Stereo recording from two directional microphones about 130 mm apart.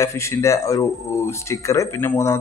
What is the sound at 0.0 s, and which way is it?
A man's voice, 20° left (ahead or behind).